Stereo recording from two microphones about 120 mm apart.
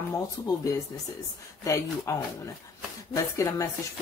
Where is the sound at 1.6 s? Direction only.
25° left (ahead or behind).